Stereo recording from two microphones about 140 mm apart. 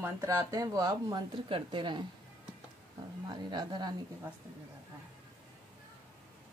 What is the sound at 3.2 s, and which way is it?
Speech, 30° right (ahead or behind).